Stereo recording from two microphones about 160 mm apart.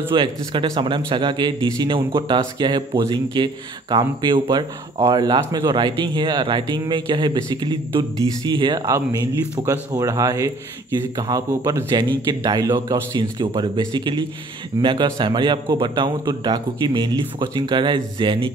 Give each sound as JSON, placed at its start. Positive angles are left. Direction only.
{"t": 0.1, "sound": "a man's voice", "side_deg": -30}